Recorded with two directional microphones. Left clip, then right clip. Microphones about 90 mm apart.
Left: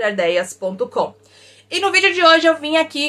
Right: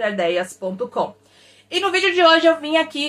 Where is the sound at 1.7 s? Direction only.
20° left (ahead or behind).